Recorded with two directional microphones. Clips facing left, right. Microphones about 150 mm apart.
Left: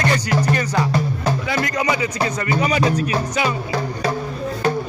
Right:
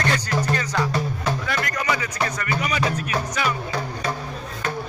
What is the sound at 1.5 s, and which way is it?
Music, 20° left (ahead or behind).